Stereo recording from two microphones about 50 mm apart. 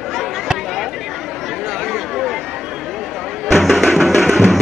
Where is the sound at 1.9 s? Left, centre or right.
Centre.